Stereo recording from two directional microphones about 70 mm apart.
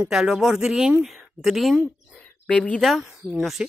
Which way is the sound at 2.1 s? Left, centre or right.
Centre.